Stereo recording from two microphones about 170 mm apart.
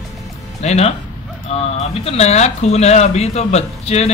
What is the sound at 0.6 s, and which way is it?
Speech, 40° left (ahead or behind).